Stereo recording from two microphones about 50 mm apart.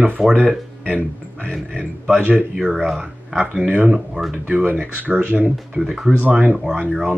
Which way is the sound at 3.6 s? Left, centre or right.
Right.